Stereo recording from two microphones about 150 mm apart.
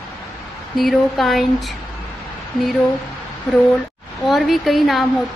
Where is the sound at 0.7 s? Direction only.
Centre (ahead or behind).